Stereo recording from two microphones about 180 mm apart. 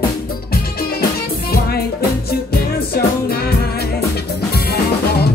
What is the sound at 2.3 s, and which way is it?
Music, 60° left (ahead or behind).